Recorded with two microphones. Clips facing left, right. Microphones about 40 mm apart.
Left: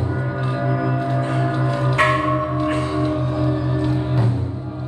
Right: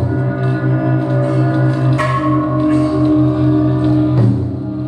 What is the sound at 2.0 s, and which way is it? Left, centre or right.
Bell, left.